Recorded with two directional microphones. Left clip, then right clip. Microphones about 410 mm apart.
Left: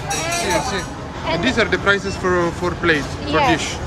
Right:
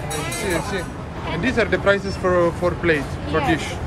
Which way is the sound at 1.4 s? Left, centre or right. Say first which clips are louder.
Even; centre.